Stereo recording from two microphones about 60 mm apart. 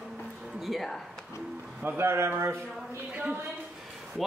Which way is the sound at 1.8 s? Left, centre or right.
Right.